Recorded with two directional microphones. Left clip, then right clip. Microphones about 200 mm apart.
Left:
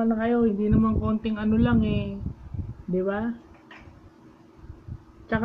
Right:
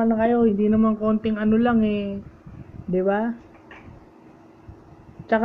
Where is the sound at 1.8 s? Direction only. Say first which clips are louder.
Right 5 dB; 35° right (ahead or behind).